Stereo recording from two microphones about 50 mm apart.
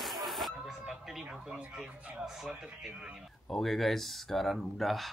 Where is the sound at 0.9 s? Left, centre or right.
Centre.